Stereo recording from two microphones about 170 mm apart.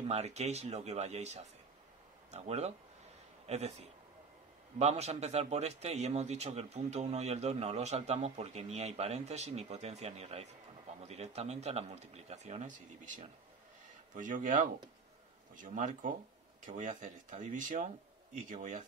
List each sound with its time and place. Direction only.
0.1 s a man's voice: 40° right (ahead or behind)